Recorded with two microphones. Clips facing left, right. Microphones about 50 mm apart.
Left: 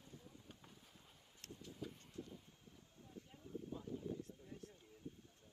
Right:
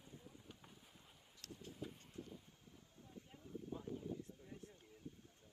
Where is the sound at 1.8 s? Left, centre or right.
Centre.